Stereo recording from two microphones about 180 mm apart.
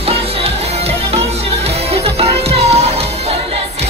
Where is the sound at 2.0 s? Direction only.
35° right (ahead or behind).